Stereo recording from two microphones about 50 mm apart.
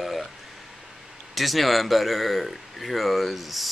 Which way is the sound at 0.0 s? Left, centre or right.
Centre.